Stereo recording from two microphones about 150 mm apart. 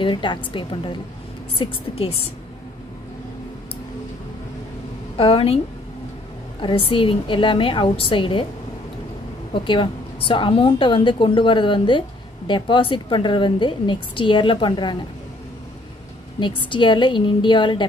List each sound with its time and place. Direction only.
0.0 s a woman's voice: 30° left (ahead or behind)
5.1 s a woman's voice: 35° left (ahead or behind)
6.6 s a woman's voice: 35° left (ahead or behind)
9.5 s a woman's voice: 35° left (ahead or behind)
16.3 s a woman's voice: 35° left (ahead or behind)